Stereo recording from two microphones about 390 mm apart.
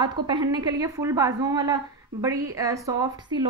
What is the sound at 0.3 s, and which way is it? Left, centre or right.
A woman's voice, centre.